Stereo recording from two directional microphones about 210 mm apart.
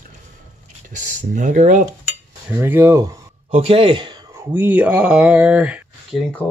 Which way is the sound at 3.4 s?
25° right (ahead or behind).